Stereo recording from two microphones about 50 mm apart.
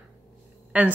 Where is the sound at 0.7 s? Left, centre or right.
Right.